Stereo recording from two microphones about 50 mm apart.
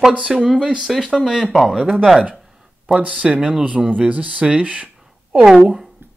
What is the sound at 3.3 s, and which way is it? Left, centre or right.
Speech, centre.